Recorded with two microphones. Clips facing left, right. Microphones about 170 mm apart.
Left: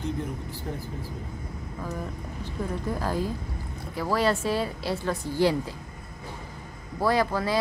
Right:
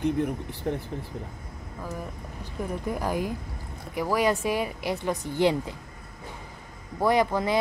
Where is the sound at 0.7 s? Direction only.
55° right (ahead or behind).